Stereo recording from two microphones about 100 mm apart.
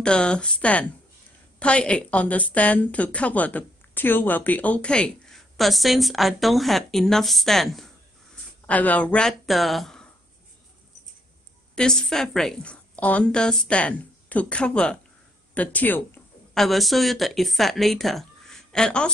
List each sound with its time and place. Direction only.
0.0 s a woman's voice: 10° left (ahead or behind)
8.6 s a woman's voice: 15° left (ahead or behind)
9.5 s speech: centre (ahead or behind)
11.7 s a woman's voice: 5° left (ahead or behind)
16.5 s speech: centre (ahead or behind)